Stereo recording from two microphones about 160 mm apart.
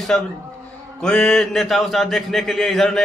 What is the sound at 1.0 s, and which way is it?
A man's voice, 5° left (ahead or behind).